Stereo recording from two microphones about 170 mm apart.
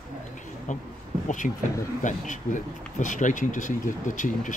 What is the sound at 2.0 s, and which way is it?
Speech, 50° left (ahead or behind).